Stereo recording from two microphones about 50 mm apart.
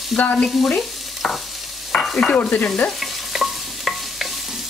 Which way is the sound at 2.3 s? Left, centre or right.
Left.